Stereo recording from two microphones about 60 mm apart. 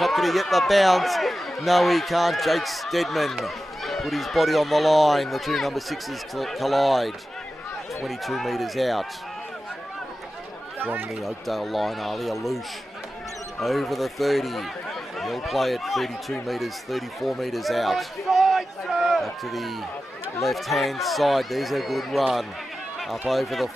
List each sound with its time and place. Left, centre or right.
0.0 s a man's voice: centre
10.8 s speech: right
11.2 s a man's voice: centre
13.6 s a man's voice: centre